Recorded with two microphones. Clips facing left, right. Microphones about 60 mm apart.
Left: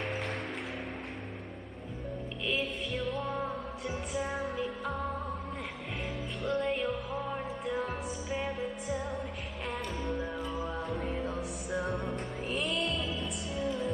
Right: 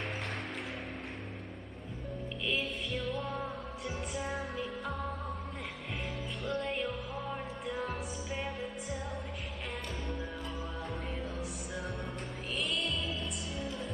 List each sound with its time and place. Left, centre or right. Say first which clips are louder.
2.4 s music: left 2 dB; centre
6.4 s music: left 4 dB; centre
10.0 s music: left 5 dB; centre